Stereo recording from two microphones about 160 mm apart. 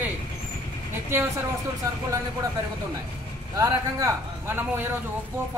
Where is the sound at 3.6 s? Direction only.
20° right (ahead or behind).